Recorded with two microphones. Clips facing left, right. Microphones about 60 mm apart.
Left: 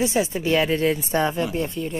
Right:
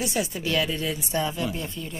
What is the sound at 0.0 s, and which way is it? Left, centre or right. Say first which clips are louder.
Speech: left 6 dB; left.